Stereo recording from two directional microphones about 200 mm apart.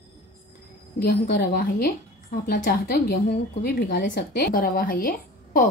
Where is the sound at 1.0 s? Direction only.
50° left (ahead or behind).